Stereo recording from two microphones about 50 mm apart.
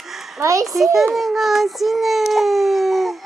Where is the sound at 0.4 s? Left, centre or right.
Right.